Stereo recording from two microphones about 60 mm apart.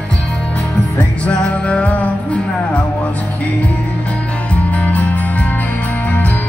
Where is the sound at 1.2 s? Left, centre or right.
Centre.